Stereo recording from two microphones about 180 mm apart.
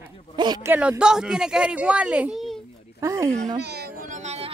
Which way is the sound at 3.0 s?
20° right (ahead or behind).